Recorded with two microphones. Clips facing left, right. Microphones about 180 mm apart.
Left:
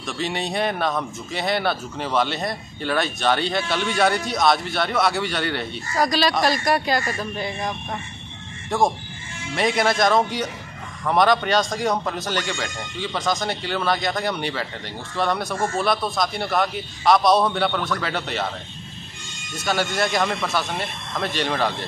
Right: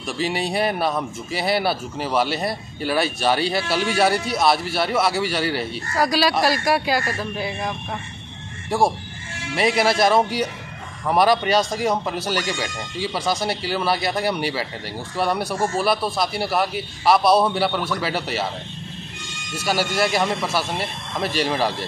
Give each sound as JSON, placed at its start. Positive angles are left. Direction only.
{"t": 0.0, "sound": "a man's voice", "side_deg": -5}
{"t": 19.5, "sound": "a man's voice", "side_deg": -5}